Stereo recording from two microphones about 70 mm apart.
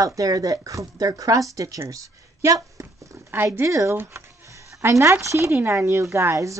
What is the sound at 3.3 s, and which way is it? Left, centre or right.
A woman's voice, right.